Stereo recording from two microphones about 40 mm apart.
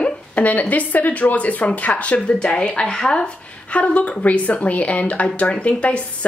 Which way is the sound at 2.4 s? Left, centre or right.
Left.